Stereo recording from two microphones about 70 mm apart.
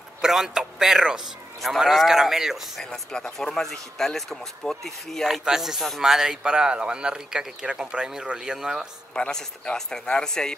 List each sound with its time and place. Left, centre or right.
0.2 s speech: centre
2.8 s speech: centre
9.1 s speech: centre